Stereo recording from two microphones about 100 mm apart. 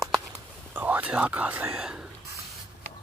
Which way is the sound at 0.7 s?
20° right (ahead or behind).